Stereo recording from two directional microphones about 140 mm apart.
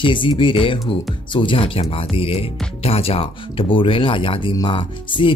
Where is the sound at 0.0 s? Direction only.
35° left (ahead or behind).